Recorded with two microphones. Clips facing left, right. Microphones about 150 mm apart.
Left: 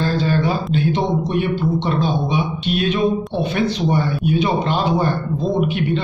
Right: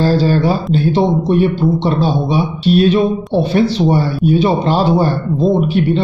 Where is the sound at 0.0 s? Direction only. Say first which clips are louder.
Right 6 dB; 35° right (ahead or behind).